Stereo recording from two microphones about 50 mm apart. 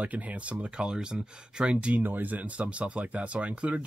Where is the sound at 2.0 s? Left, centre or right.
Right.